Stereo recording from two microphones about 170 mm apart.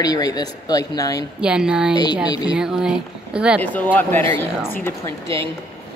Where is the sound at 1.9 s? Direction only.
25° left (ahead or behind).